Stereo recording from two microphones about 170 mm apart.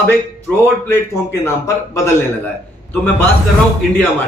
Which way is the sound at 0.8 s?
15° left (ahead or behind).